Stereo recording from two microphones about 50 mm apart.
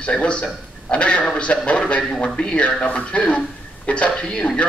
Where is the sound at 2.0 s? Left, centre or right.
Centre.